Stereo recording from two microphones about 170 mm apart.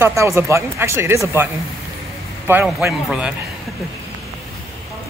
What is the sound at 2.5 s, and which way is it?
Speech, 10° right (ahead or behind).